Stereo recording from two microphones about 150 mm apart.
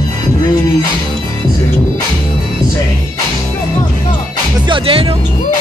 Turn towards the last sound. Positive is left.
turn(degrees=-35)  # may be behind; listen again after turning